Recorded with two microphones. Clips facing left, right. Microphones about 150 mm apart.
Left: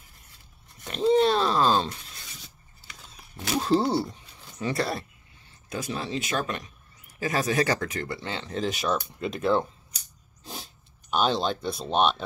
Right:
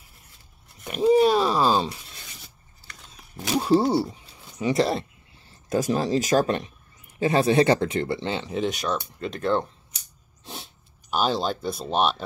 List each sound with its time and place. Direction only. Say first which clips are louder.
0.8 s speech: right 3 dB; 10° right (ahead or behind)
3.4 s speech: right 3 dB; 15° right (ahead or behind)
5.5 s speech: right 9 dB; 45° right (ahead or behind); by 8.5 s 20° right (ahead or behind)
8.5 s speech: left 1 dB; centre (ahead or behind)
10.4 s a sound: right 1 dB; centre (ahead or behind)